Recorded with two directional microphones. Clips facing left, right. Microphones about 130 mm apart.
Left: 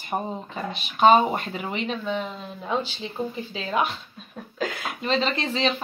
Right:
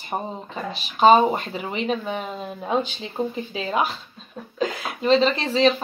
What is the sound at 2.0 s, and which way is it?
Speech, 15° right (ahead or behind).